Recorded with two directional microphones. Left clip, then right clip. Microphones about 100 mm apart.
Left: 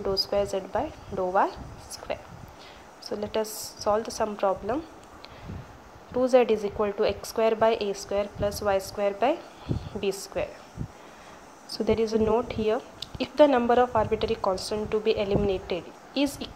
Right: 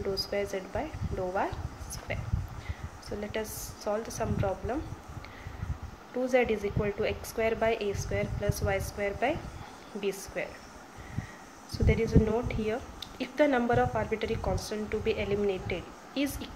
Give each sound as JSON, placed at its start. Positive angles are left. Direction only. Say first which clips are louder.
{"t": 0.1, "sound": "a woman's voice", "louder": "left 7 dB", "side_deg": 40}
{"t": 2.1, "sound": "a woman's voice", "louder": "left 4 dB", "side_deg": 40}
{"t": 6.2, "sound": "a woman's voice", "louder": "left 6 dB", "side_deg": 40}
{"t": 11.7, "sound": "a woman's voice", "louder": "left 4 dB", "side_deg": 45}